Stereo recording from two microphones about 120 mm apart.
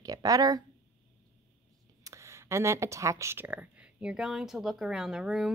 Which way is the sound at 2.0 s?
25° right (ahead or behind).